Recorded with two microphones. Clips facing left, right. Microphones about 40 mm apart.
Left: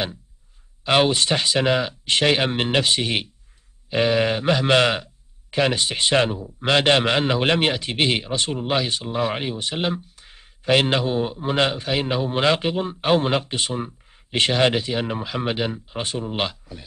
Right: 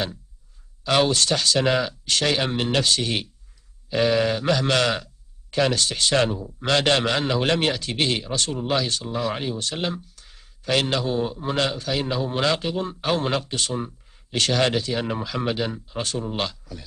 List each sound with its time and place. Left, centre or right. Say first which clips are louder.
0.8 s a man's voice: left 2 dB; left